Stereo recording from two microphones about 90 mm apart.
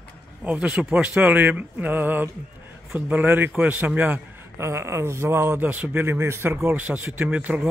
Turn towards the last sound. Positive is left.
turn(degrees=-15)  # may be behind; listen again after turning